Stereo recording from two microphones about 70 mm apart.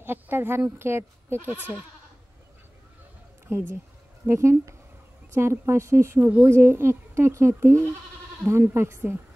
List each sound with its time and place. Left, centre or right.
0.0 s speech: right
3.4 s speech: right
6.2 s speech: right
6.5 s speech: right